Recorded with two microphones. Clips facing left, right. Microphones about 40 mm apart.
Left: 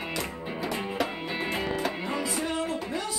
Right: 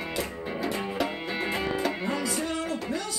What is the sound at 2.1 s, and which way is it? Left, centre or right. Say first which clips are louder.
Music: even; centre.